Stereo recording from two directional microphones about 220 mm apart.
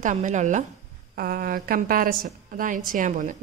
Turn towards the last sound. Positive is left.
turn(degrees=-35)  # may be behind; listen again after turning